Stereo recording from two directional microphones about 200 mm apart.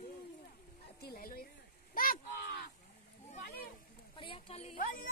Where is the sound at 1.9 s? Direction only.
45° left (ahead or behind).